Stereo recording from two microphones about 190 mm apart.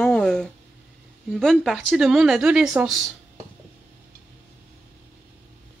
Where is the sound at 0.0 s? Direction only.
5° left (ahead or behind).